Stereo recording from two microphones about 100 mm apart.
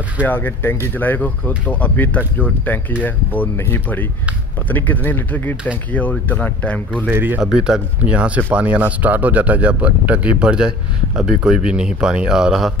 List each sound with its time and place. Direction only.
0.2 s speech: 20° left (ahead or behind)
7.1 s speech: 20° right (ahead or behind)
7.5 s speech: 5° right (ahead or behind)